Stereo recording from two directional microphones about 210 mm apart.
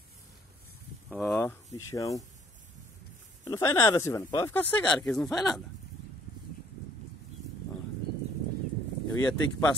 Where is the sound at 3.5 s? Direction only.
15° left (ahead or behind).